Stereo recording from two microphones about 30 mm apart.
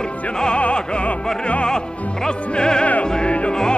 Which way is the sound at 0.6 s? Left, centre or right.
Left.